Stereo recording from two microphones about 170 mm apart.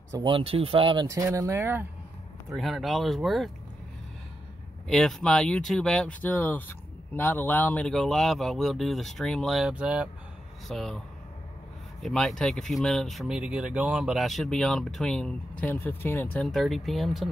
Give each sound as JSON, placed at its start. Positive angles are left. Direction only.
{"t": 0.1, "sound": "speech", "side_deg": -30}
{"t": 1.0, "sound": "speech", "side_deg": -20}
{"t": 2.5, "sound": "speech", "side_deg": 0}
{"t": 4.8, "sound": "speech", "side_deg": 0}
{"t": 12.0, "sound": "speech", "side_deg": 0}